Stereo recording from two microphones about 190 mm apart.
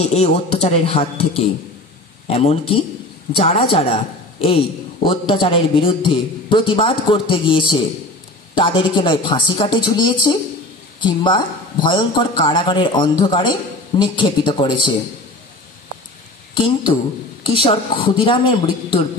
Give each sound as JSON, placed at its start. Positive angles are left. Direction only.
{"t": 0.0, "sound": "a man's voice", "side_deg": 35}
{"t": 17.4, "sound": "a man's voice", "side_deg": 25}